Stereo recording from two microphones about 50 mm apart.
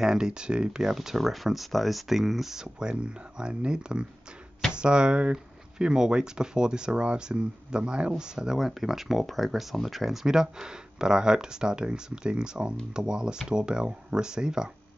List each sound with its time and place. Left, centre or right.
0.0 s speech: centre